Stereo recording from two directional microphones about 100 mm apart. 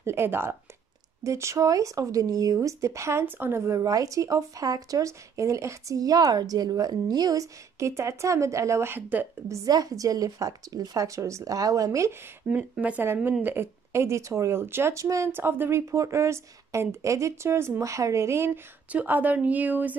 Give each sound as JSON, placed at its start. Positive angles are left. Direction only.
{"t": 0.0, "sound": "a woman's voice", "side_deg": -25}
{"t": 9.5, "sound": "speech", "side_deg": -35}
{"t": 12.4, "sound": "a woman's voice", "side_deg": -15}
{"t": 18.9, "sound": "speech", "side_deg": -15}